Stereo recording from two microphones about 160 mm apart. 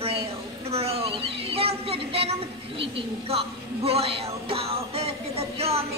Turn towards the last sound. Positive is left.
turn(degrees=-40)  # may be behind; listen again after turning